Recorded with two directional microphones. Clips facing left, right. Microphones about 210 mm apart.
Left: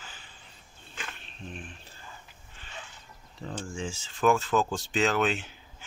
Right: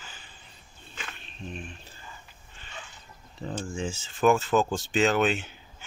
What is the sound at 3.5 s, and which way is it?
Speech, centre (ahead or behind).